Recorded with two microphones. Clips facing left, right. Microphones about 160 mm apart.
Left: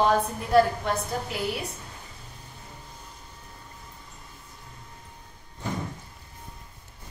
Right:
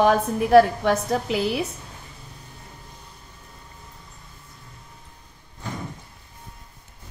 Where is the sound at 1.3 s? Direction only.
90° right.